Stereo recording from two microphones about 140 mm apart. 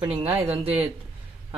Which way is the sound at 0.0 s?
45° right (ahead or behind).